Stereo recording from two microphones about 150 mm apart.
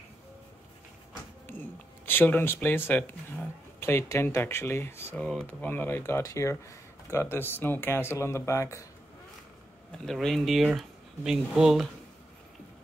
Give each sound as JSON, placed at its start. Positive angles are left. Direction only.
{"t": 1.5, "sound": "speech", "side_deg": 15}
{"t": 10.0, "sound": "speech", "side_deg": 0}